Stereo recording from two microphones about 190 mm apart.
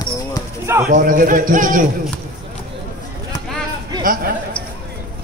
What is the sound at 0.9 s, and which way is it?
Speech, 45° right (ahead or behind).